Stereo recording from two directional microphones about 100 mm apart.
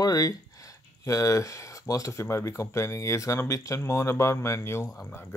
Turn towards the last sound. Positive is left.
turn(degrees=25)  # may be behind; listen again after turning